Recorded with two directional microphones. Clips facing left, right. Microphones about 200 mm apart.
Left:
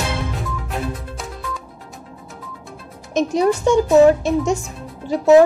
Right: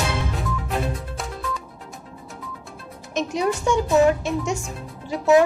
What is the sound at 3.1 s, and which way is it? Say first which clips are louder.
Music: left 6 dB; 40° left (ahead or behind).